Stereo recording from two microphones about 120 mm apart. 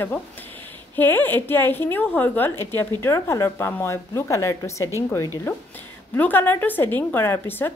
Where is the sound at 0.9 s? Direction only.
15° left (ahead or behind).